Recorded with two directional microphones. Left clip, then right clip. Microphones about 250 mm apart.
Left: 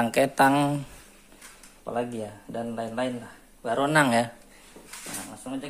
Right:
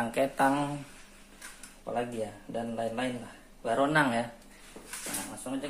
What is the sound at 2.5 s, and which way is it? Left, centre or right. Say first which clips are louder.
Speech: left 2 dB; left.